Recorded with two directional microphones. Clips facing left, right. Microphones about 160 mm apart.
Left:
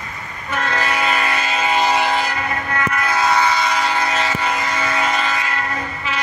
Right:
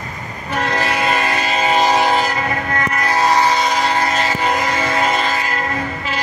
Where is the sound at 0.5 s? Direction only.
35° right (ahead or behind).